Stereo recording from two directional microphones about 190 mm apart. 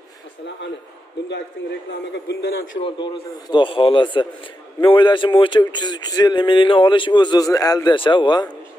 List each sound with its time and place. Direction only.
1.6 s a man's voice: 65° left (ahead or behind)
2.8 s speech: 25° left (ahead or behind)